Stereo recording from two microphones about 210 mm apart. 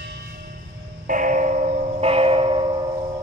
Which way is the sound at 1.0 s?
40° right (ahead or behind).